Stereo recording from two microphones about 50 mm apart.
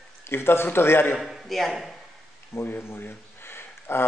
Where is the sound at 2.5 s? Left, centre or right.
Left.